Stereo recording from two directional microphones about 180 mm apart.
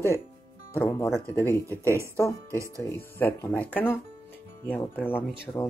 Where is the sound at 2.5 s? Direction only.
15° right (ahead or behind).